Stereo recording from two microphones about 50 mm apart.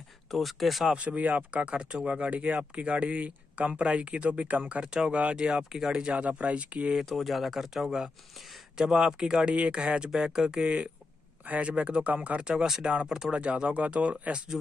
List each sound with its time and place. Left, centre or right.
0.3 s speech: centre
0.8 s speech: right
7.1 s speech: centre
11.4 s speech: right